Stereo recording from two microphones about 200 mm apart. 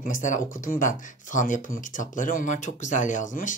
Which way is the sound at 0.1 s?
40° left (ahead or behind).